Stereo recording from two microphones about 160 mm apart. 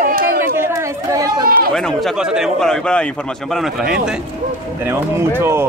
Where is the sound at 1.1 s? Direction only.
20° right (ahead or behind).